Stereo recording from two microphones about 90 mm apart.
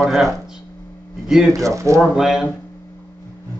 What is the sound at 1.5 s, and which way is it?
Speech, 35° right (ahead or behind).